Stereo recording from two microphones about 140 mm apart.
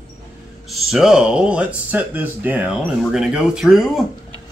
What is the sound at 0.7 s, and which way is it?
Speech, centre (ahead or behind).